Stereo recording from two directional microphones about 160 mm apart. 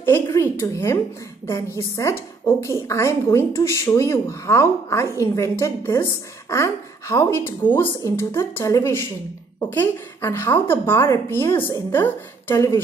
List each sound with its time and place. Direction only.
0.0 s a woman's voice: 15° left (ahead or behind)